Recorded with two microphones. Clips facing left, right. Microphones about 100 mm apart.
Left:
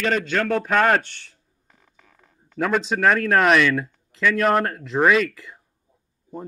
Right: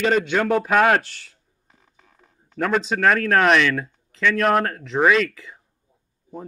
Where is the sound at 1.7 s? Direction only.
20° right (ahead or behind).